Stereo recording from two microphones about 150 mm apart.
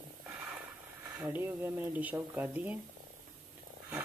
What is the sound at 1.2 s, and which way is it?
Speech, 15° right (ahead or behind).